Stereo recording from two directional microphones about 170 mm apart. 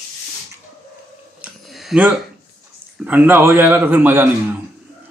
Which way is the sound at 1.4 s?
Centre (ahead or behind).